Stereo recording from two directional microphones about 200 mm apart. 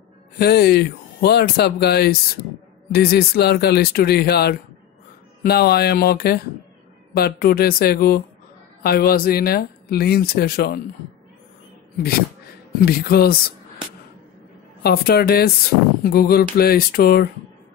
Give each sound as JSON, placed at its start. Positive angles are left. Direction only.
{"t": 0.4, "sound": "speech", "side_deg": 55}
{"t": 12.8, "sound": "speech", "side_deg": 50}
{"t": 14.8, "sound": "speech", "side_deg": 50}